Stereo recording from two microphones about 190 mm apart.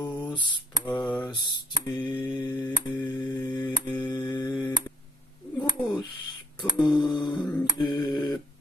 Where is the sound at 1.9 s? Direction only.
25° left (ahead or behind).